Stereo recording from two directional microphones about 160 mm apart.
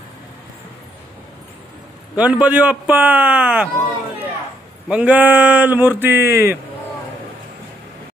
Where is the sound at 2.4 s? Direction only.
10° right (ahead or behind).